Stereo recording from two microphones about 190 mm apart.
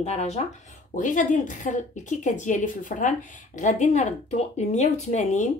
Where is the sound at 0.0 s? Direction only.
35° left (ahead or behind).